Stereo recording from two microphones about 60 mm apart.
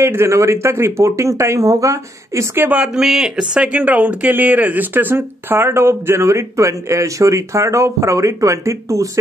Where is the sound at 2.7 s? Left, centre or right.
Centre.